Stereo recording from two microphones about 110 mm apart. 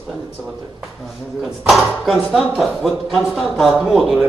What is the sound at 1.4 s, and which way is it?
Speech, centre (ahead or behind).